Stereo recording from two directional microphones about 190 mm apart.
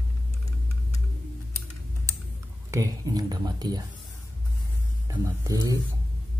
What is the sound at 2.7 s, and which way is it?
Speech, 20° right (ahead or behind).